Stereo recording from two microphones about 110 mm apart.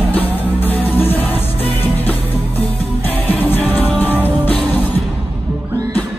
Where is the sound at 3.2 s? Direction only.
15° left (ahead or behind).